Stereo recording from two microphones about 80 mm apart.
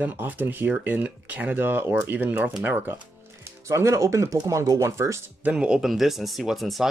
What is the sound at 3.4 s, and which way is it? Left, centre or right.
Speech, right.